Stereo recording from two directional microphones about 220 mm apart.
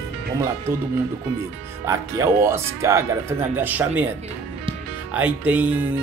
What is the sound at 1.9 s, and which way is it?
Speech, 15° right (ahead or behind).